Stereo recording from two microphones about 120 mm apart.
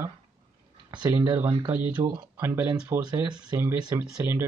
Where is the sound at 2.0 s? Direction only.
45° right (ahead or behind).